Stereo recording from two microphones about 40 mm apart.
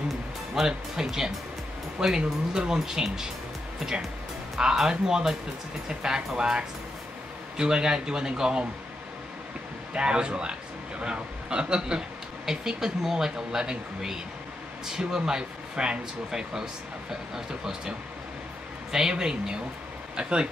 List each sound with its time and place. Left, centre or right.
0.6 s speech: centre
4.6 s speech: centre
9.9 s a man's voice: right